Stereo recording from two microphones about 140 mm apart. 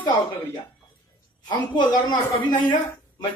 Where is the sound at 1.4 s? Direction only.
30° left (ahead or behind).